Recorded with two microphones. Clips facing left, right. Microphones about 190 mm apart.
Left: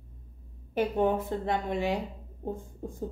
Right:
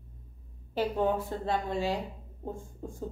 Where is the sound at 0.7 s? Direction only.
20° left (ahead or behind).